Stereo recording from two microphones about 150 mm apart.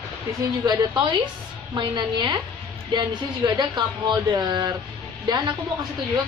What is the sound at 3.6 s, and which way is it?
Speech, 30° right (ahead or behind).